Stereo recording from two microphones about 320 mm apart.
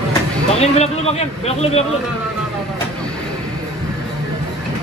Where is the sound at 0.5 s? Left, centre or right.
Centre.